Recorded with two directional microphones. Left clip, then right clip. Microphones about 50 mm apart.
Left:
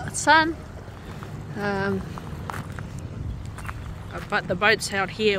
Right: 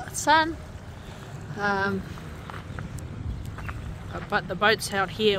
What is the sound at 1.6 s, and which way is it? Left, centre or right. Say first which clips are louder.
Speech: right 1 dB; right.